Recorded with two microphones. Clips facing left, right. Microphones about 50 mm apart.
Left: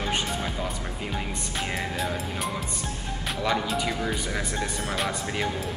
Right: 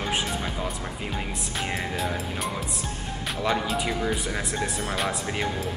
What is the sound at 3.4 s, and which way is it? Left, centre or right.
Speech, centre.